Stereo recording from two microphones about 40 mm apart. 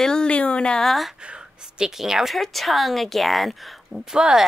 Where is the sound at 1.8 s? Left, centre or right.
Centre.